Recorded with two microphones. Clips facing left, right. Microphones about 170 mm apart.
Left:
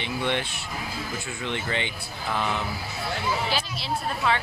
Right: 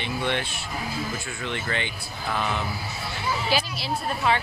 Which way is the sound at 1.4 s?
20° left (ahead or behind).